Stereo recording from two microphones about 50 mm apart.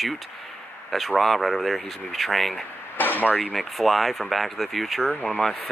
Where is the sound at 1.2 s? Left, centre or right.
Centre.